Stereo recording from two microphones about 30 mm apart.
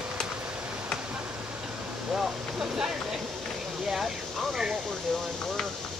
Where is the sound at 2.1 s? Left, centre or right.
Right.